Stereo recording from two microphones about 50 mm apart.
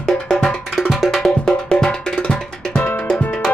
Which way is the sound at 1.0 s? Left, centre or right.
Centre.